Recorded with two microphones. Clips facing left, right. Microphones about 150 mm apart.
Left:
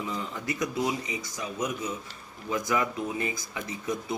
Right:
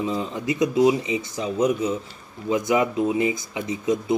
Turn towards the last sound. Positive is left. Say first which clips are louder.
# right 9 dB
turn(degrees=-20)  # may be behind; listen again after turning